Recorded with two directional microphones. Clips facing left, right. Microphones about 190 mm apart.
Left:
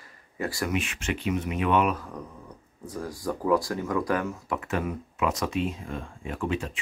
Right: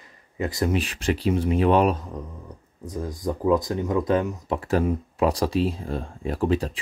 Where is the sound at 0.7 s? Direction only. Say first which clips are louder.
Right 5 dB; 35° right (ahead or behind).